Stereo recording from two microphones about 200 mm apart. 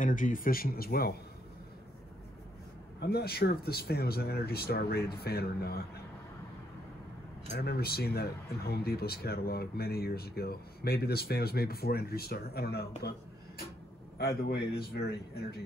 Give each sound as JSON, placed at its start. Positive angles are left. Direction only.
{"t": 0.0, "sound": "speech", "side_deg": 40}
{"t": 3.0, "sound": "speech", "side_deg": 55}
{"t": 7.5, "sound": "speech", "side_deg": 50}
{"t": 14.1, "sound": "speech", "side_deg": 50}